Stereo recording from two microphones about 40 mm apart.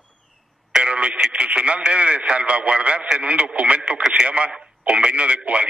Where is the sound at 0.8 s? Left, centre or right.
Right.